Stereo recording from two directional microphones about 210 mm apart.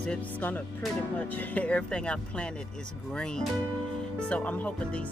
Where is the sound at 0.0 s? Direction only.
5° left (ahead or behind).